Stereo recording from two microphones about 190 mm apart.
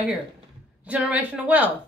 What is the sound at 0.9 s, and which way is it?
Speech, 5° right (ahead or behind).